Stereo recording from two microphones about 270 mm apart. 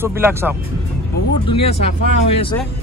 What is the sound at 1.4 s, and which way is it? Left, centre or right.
Speech, left.